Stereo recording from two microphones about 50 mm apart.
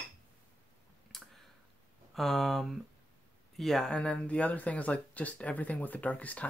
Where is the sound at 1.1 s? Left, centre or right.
Centre.